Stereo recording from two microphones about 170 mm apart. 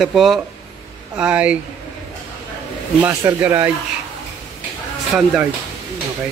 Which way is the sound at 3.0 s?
15° right (ahead or behind).